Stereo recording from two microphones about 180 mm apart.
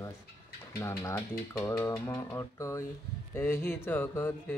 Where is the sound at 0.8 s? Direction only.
15° left (ahead or behind).